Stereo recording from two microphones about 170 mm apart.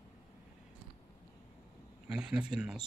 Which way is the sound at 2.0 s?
5° right (ahead or behind).